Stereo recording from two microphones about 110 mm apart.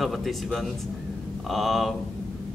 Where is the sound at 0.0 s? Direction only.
Centre (ahead or behind).